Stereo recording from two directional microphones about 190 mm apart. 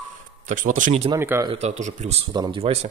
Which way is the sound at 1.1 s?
15° right (ahead or behind).